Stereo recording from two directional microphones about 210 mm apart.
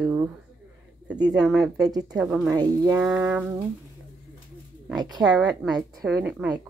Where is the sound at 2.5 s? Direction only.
20° right (ahead or behind).